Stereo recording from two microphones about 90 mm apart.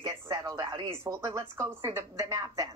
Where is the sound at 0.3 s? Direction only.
40° right (ahead or behind).